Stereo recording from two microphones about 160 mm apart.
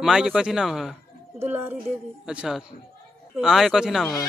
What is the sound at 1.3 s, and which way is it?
A woman's voice, 15° right (ahead or behind).